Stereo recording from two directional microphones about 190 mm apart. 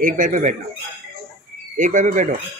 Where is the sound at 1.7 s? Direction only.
40° right (ahead or behind).